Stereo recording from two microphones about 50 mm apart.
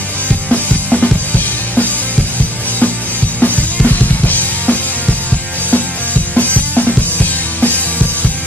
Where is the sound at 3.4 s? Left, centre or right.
Left.